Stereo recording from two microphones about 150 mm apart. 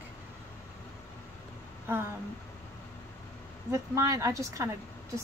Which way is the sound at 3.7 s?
20° right (ahead or behind).